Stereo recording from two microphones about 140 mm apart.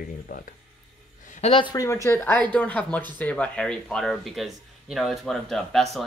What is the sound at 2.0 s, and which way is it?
Speech, 15° left (ahead or behind).